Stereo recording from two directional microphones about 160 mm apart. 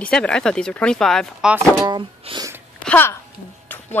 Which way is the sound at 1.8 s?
25° right (ahead or behind).